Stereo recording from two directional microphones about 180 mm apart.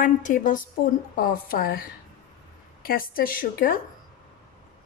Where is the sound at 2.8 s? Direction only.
55° left (ahead or behind).